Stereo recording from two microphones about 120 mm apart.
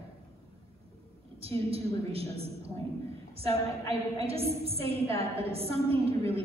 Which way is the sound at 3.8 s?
55° right (ahead or behind).